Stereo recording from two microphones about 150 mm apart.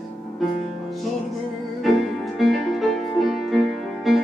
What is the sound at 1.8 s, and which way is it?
Music, centre (ahead or behind).